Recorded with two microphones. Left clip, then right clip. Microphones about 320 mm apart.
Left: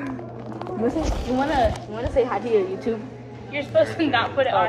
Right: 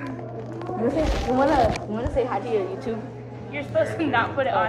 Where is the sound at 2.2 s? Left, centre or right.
Left.